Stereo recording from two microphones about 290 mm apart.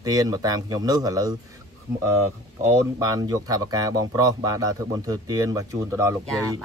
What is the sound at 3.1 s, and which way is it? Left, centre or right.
Speech, centre.